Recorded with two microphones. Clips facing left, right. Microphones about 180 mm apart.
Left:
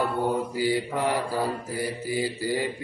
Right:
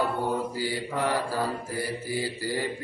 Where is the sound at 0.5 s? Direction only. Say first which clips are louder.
Left 5 dB; 15° left (ahead or behind).